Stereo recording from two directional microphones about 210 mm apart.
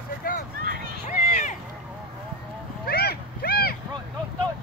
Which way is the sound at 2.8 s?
45° left (ahead or behind).